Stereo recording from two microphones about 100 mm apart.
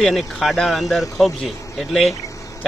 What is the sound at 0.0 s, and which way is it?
Speech, centre (ahead or behind).